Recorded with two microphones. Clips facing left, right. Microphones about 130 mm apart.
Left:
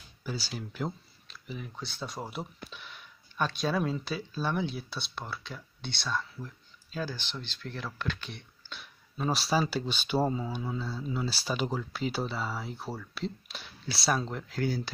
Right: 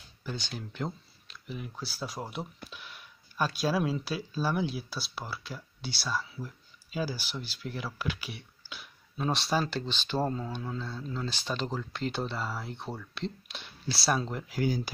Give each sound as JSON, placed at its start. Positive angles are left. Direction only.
{"t": 0.2, "sound": "speech", "side_deg": 5}
{"t": 14.5, "sound": "speech", "side_deg": -15}